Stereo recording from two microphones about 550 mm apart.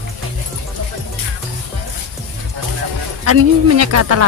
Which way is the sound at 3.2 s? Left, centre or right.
Right.